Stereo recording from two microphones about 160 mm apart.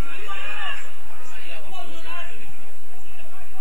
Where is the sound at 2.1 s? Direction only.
20° left (ahead or behind).